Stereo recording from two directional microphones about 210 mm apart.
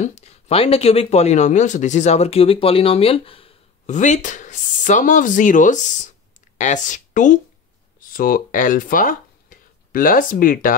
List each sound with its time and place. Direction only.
0.0 s speech: 30° left (ahead or behind)